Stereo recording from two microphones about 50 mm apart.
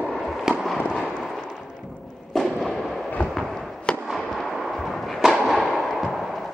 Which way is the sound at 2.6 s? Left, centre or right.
Centre.